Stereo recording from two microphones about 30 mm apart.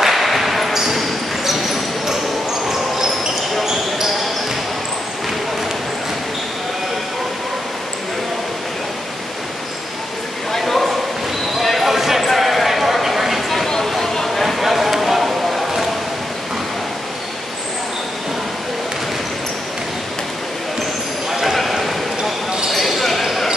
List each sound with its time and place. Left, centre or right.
0.0 s basketball bounce: centre
3.6 s basketball bounce: centre
10.6 s a sound: centre
11.6 s basketball bounce: centre
12.3 s horse: centre
13.8 s a sound: centre
14.6 s a sound: centre
21.3 s basketball bounce: centre
22.7 s basketball bounce: centre